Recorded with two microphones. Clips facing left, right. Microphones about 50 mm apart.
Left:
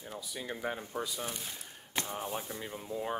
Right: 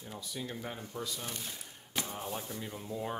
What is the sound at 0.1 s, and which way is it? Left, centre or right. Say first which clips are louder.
Speech: left 1 dB; centre.